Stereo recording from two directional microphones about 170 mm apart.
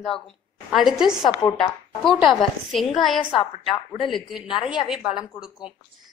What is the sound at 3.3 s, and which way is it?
Speech, 30° left (ahead or behind).